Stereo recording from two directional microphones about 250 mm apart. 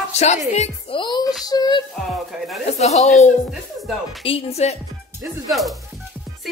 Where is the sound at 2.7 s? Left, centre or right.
Left.